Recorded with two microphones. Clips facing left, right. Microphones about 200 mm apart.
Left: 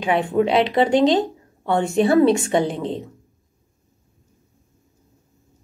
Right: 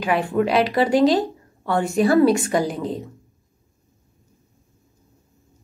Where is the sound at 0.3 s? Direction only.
20° left (ahead or behind).